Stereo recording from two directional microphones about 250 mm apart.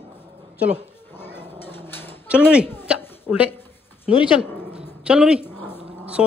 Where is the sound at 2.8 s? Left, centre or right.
Centre.